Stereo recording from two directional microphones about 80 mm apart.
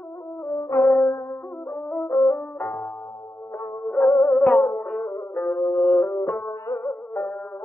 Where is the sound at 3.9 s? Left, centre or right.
Centre.